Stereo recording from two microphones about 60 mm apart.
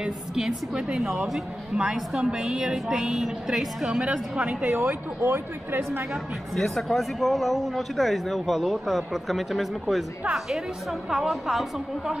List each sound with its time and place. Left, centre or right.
0.4 s a woman's voice: centre
4.0 s a woman's voice: centre
4.6 s speech: right
6.5 s a woman's voice: centre